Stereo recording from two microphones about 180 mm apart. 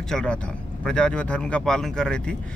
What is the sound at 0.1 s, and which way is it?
Speech, 5° left (ahead or behind).